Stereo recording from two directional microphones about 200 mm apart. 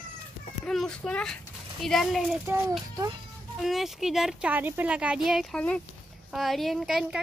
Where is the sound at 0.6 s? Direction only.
5° left (ahead or behind).